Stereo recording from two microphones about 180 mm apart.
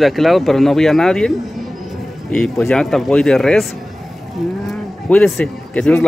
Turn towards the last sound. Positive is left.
turn(degrees=5)  # may be behind; listen again after turning